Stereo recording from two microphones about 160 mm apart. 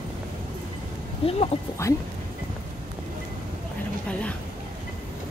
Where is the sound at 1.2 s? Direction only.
40° left (ahead or behind).